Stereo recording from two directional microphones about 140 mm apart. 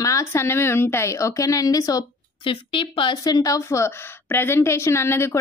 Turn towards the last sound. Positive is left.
turn(degrees=20)  # may be behind; listen again after turning